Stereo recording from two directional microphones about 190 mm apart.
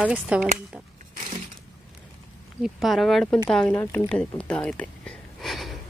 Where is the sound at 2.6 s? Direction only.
Centre (ahead or behind).